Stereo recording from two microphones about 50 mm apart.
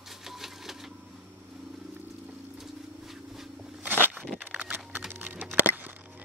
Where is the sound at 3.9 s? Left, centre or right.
Right.